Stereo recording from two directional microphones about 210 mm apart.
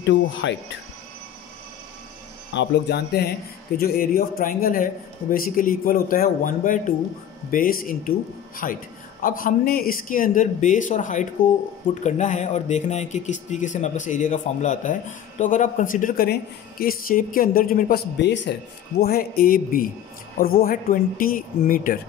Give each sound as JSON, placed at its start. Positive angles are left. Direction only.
{"t": 0.0, "sound": "speech", "side_deg": 60}
{"t": 2.5, "sound": "a man's voice", "side_deg": 50}